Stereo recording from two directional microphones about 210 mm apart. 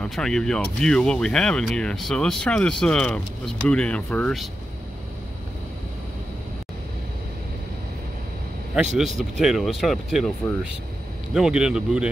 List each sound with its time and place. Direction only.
0.0 s speech: centre (ahead or behind)
8.7 s speech: centre (ahead or behind)